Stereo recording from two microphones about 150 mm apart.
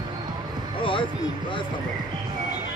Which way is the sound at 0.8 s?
35° left (ahead or behind).